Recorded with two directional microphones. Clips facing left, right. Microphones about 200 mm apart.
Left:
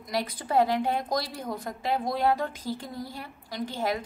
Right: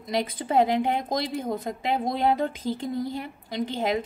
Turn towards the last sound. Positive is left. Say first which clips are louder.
# right 4 dB
turn(degrees=-20)  # may be behind; listen again after turning